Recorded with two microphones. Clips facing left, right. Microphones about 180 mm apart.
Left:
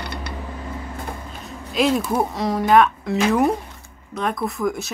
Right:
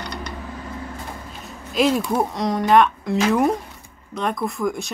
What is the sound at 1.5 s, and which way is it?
Speech, centre (ahead or behind).